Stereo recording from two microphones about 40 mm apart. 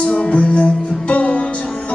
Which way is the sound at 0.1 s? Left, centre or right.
Left.